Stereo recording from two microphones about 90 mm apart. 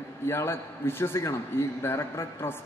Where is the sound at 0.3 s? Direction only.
25° left (ahead or behind).